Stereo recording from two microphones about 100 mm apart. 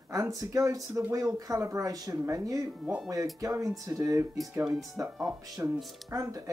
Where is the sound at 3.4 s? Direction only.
30° right (ahead or behind).